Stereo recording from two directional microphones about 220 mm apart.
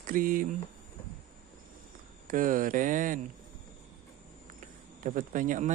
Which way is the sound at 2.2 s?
35° right (ahead or behind).